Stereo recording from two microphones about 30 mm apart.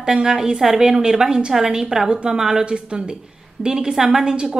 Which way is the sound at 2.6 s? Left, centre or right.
Right.